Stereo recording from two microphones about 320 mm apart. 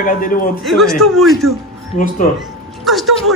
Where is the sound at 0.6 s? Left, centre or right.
Centre.